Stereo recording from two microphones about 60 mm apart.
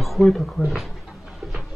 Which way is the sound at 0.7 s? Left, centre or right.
Centre.